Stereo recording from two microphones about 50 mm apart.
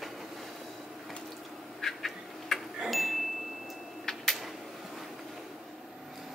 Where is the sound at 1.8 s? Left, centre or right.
Centre.